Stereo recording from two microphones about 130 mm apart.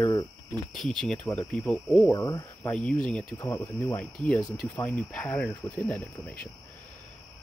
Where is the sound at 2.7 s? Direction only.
10° left (ahead or behind).